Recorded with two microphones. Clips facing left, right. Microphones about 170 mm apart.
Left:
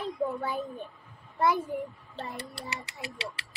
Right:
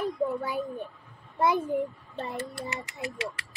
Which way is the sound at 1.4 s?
20° right (ahead or behind).